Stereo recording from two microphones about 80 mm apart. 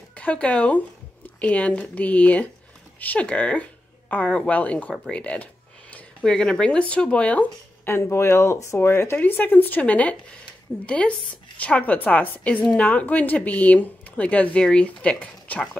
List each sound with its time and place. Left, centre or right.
0.1 s a woman's voice: centre
7.8 s a woman's voice: left